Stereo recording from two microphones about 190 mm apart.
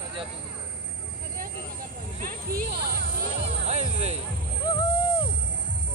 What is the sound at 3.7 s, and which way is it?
Music, 35° right (ahead or behind).